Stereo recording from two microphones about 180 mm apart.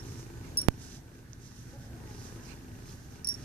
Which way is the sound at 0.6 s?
10° left (ahead or behind).